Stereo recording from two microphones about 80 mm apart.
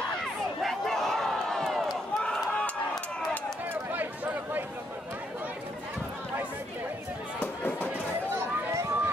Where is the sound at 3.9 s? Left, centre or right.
Right.